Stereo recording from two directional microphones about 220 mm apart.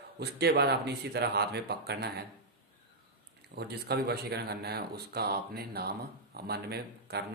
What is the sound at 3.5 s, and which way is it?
Speech, 45° right (ahead or behind).